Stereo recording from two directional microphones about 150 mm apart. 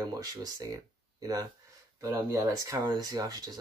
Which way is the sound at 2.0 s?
20° right (ahead or behind).